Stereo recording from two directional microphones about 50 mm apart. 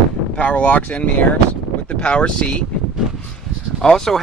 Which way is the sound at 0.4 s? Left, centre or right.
Left.